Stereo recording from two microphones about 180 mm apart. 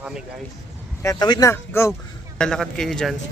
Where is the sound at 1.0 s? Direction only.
20° left (ahead or behind); by 3.2 s centre (ahead or behind).